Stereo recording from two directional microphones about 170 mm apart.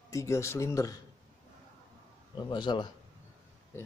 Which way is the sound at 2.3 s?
25° left (ahead or behind).